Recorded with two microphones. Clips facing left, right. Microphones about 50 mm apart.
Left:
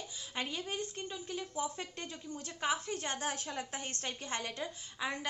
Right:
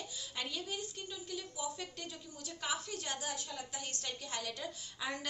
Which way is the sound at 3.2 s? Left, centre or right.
Left.